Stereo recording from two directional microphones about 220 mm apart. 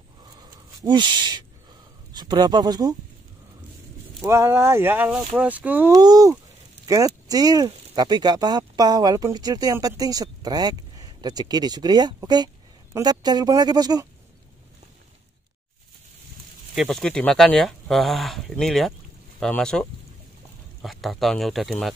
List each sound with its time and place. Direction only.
0.4 s a sound: 20° right (ahead or behind)
2.1 s speech: 20° right (ahead or behind)
4.2 s speech: 10° right (ahead or behind)
16.7 s speech: centre (ahead or behind)